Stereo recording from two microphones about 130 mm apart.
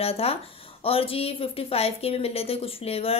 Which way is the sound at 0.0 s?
50° left (ahead or behind).